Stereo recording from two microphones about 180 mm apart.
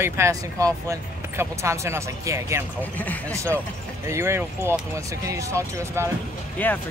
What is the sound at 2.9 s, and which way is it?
Speech, 10° left (ahead or behind).